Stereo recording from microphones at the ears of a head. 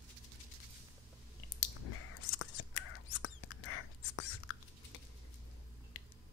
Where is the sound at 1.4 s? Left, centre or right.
Left.